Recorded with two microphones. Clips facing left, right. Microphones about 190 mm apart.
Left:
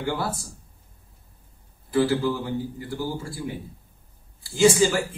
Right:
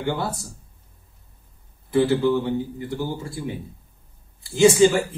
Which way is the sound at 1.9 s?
20° right (ahead or behind).